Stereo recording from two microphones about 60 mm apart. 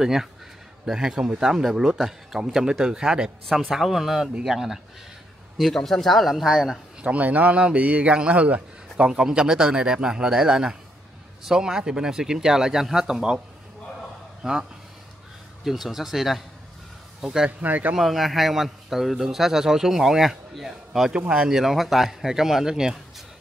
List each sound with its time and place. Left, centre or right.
0.0 s a man's voice: centre
3.4 s a man's voice: centre
5.8 s a man's voice: centre
7.0 s a man's voice: right
14.4 s a man's voice: centre
17.5 s speech: right
17.9 s a man's voice: centre